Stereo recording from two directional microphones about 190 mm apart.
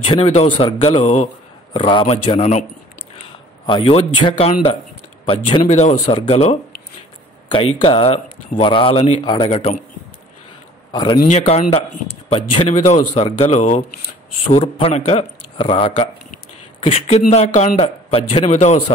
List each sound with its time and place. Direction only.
0.1 s speech: 30° left (ahead or behind)
3.6 s a man's voice: 25° left (ahead or behind)
10.9 s a man's voice: 20° left (ahead or behind)
11.1 s a man's voice: 35° left (ahead or behind)